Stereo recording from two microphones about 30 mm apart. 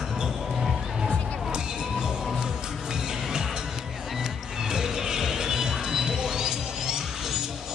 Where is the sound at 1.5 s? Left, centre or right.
Right.